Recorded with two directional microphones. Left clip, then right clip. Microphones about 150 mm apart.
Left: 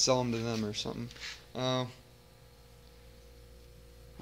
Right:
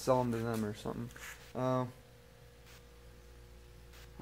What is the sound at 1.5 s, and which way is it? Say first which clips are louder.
Speech: left 1 dB; centre (ahead or behind).